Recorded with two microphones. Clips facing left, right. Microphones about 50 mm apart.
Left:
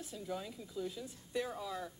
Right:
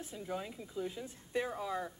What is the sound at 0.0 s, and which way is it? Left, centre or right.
Speech, right.